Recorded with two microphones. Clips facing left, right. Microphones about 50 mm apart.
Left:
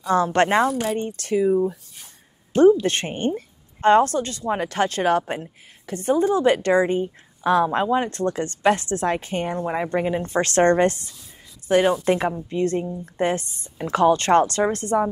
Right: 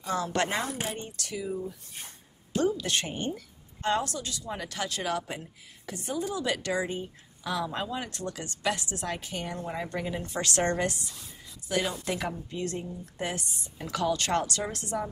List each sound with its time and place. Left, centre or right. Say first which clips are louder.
0.0 s a woman's voice: left 10 dB; left
2.8 s a woman's voice: left 8 dB; left